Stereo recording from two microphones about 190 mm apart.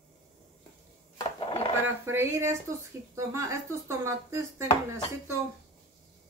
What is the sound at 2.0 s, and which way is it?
Speech, 15° right (ahead or behind).